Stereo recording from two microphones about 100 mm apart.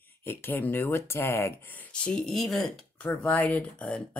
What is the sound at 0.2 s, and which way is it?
Speech, 20° left (ahead or behind).